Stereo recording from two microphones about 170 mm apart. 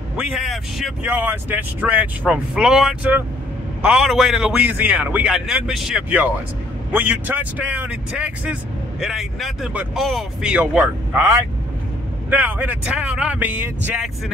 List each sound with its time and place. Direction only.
0.2 s a man's voice: centre (ahead or behind)